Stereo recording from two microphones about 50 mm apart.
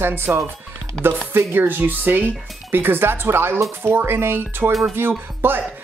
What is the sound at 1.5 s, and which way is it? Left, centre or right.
Speech, right.